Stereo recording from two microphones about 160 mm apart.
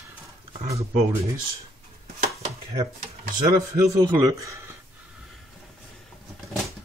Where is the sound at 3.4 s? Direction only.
20° right (ahead or behind).